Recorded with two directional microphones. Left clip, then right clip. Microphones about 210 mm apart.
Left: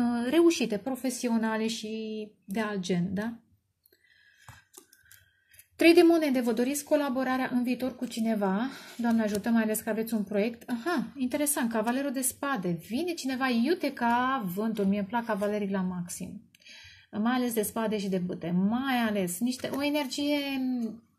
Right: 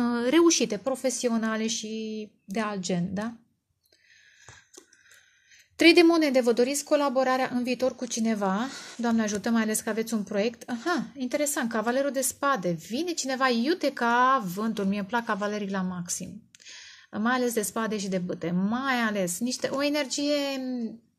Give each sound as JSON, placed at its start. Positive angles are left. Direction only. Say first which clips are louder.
{"t": 0.0, "sound": "a woman's voice", "louder": "right 2 dB", "side_deg": -40}
{"t": 5.8, "sound": "a woman's voice", "louder": "right 2 dB", "side_deg": -40}